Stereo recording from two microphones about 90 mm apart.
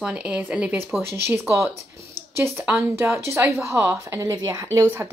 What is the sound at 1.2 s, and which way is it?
A woman's voice, 30° right (ahead or behind).